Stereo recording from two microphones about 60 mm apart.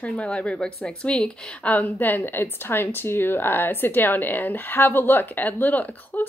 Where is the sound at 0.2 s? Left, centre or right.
Centre.